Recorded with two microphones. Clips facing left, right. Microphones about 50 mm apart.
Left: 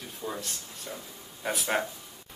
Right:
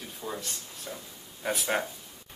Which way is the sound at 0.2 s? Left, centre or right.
Centre.